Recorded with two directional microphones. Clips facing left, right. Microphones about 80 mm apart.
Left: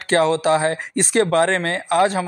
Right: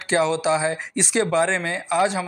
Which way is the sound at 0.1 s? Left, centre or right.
Left.